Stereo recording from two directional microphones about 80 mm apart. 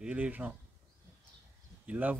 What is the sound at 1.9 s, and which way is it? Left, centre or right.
Speech, centre.